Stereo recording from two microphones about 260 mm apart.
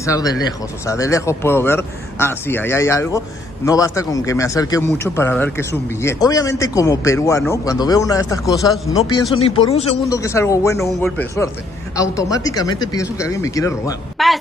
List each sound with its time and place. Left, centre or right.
0.0 s speech: centre
10.1 s speech: centre
14.1 s a sound: centre